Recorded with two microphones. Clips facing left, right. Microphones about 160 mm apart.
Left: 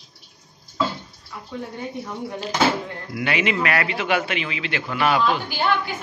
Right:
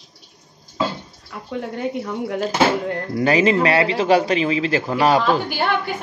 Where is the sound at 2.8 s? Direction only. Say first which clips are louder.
Right 10 dB; 60° right (ahead or behind).